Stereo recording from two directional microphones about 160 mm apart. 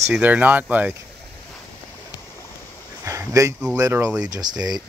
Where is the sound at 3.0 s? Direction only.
20° right (ahead or behind).